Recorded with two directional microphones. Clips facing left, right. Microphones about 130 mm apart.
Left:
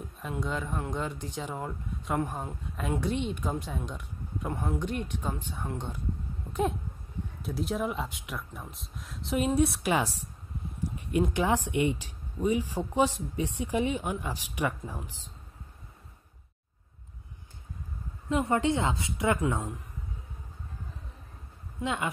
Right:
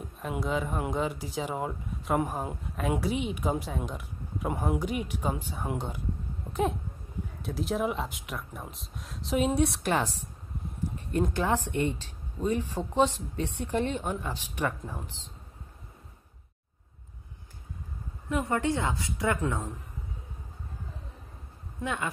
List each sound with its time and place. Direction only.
0.3 s speech: 5° right (ahead or behind)
11.0 s speech: 10° left (ahead or behind)
18.3 s a woman's voice: 20° left (ahead or behind)
21.8 s a woman's voice: 20° left (ahead or behind)